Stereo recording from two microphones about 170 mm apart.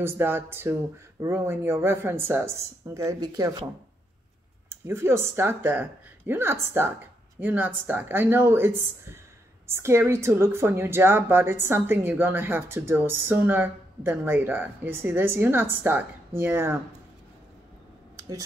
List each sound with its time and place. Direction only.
0.0 s a woman's voice: 15° right (ahead or behind)
4.6 s a woman's voice: 15° right (ahead or behind)